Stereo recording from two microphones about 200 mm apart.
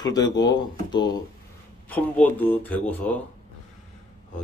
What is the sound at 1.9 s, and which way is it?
Speech, 10° left (ahead or behind).